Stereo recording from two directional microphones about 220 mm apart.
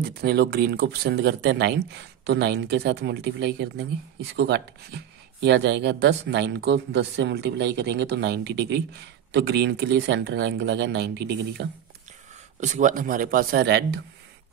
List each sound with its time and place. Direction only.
0.0 s speech: 45° right (ahead or behind)
12.5 s speech: 35° right (ahead or behind); by 14.0 s 50° right (ahead or behind)